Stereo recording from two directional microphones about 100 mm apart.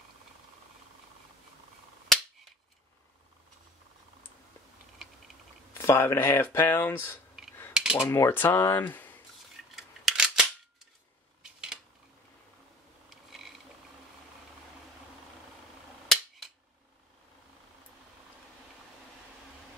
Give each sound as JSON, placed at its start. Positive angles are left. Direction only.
{"t": 5.8, "sound": "speech", "side_deg": 25}
{"t": 7.7, "sound": "cutlery", "side_deg": -10}
{"t": 8.0, "sound": "speech", "side_deg": 25}
{"t": 9.8, "sound": "scissors", "side_deg": -5}